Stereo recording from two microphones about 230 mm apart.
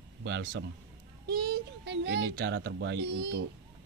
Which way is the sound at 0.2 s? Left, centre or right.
Right.